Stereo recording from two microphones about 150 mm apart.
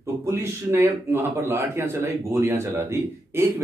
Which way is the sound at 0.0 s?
15° right (ahead or behind).